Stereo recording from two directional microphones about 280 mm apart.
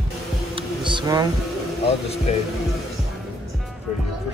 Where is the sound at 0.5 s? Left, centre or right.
Centre.